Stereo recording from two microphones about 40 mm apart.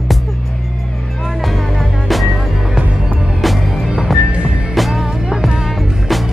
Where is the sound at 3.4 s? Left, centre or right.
Centre.